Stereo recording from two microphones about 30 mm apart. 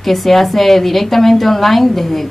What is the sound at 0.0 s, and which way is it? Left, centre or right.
A woman's voice, centre.